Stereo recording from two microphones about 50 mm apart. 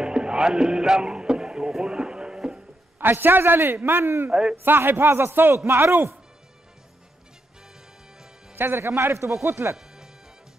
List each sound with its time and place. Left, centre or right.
0.0 s music: centre
3.0 s a man's voice: right
4.3 s a man's voice: centre
4.6 s a man's voice: right
8.5 s a man's voice: right
9.4 s speech: right